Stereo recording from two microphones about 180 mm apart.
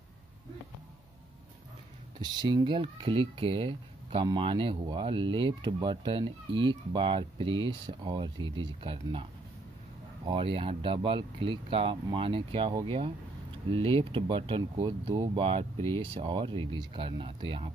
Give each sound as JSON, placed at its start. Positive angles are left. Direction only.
{"t": 2.1, "sound": "speech", "side_deg": -25}